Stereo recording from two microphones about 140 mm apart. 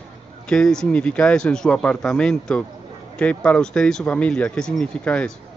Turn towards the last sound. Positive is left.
turn(degrees=5)  # may be behind; listen again after turning